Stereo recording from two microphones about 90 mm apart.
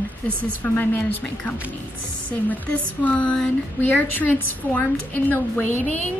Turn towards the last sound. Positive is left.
turn(degrees=20)  # may be behind; listen again after turning